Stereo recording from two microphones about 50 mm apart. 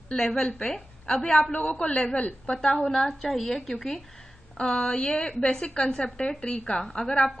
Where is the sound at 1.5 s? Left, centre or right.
Left.